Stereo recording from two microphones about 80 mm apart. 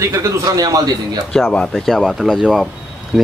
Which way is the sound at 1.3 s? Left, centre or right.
Centre.